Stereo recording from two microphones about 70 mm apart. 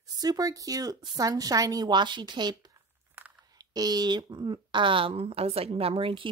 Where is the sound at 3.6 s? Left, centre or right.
Right.